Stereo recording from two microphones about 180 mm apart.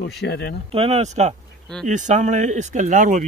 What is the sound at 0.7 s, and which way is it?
Speech, 35° right (ahead or behind).